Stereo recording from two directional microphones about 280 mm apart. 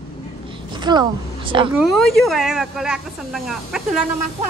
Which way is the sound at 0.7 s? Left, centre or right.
Centre.